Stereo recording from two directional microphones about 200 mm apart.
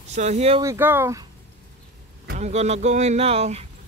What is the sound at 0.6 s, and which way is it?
Speech, 10° right (ahead or behind).